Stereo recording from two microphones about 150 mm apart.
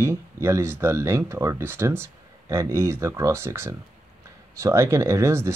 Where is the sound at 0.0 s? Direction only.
15° right (ahead or behind).